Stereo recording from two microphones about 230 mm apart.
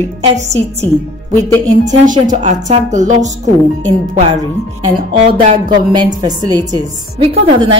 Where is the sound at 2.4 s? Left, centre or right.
Right.